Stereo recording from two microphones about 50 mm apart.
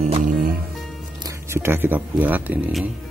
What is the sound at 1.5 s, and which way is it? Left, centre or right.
Speech, right.